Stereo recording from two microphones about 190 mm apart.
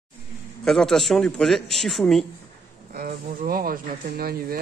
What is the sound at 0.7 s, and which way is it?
Speech, centre (ahead or behind).